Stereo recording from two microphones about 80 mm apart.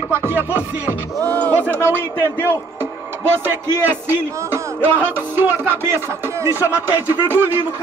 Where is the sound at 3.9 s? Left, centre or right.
Right.